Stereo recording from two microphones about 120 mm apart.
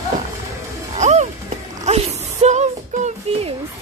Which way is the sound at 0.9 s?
75° right (ahead or behind).